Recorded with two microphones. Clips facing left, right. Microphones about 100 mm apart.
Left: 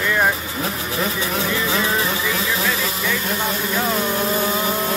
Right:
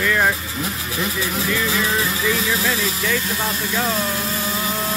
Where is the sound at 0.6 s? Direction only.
30° left (ahead or behind).